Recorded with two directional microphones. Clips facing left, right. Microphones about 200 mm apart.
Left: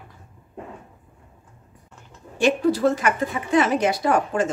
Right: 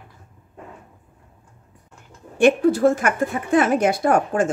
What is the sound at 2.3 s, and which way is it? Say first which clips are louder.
Speech: right 4 dB; 50° right (ahead or behind).